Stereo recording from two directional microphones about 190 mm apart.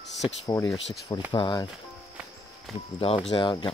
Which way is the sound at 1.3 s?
25° left (ahead or behind).